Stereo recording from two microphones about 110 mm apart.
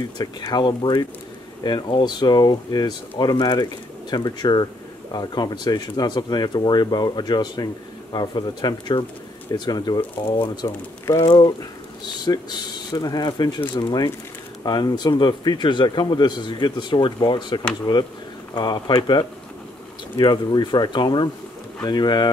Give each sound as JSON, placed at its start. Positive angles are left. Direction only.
{"t": 0.5, "sound": "speech", "side_deg": 40}